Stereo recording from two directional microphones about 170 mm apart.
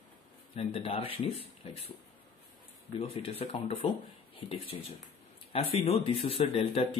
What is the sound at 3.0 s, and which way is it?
Speech, 35° left (ahead or behind).